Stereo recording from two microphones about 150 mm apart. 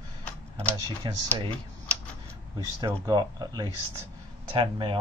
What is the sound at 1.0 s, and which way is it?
Speech, 30° right (ahead or behind).